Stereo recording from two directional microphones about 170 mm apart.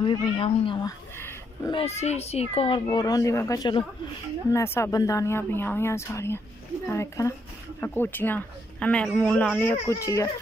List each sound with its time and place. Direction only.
0.0 s speech: 30° left (ahead or behind)
0.8 s a man's voice: 15° left (ahead or behind)
1.7 s a child's voice: 35° left (ahead or behind); by 10.3 s 20° left (ahead or behind)